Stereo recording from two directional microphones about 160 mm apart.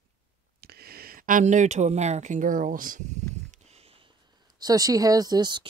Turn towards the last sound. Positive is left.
turn(degrees=-25)  # may be behind; listen again after turning